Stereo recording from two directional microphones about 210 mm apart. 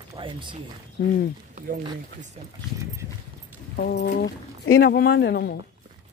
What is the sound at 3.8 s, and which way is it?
Speech, 50° left (ahead or behind).